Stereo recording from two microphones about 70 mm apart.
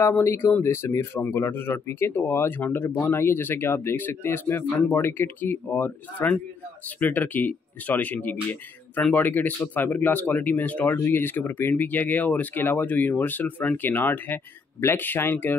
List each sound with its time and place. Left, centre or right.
0.1 s speech: left